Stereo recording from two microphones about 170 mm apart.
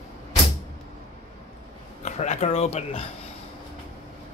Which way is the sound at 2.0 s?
45° left (ahead or behind).